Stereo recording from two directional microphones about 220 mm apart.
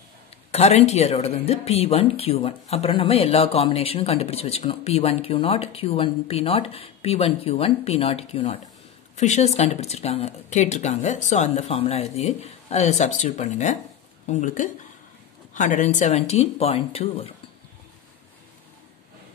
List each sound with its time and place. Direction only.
0.5 s speech: 30° left (ahead or behind)